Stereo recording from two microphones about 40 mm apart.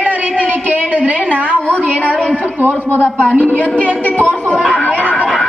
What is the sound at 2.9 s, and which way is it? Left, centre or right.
A woman's voice, left.